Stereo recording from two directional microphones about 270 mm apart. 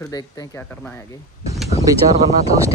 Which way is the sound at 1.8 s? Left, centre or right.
Centre.